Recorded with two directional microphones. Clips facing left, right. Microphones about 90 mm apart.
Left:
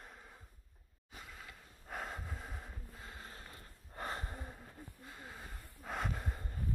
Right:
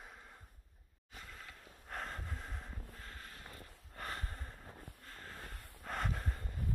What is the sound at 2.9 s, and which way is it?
Vehicle, 15° left (ahead or behind).